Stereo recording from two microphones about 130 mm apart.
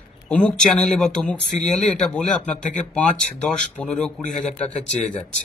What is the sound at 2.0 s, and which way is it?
Speech, 10° left (ahead or behind).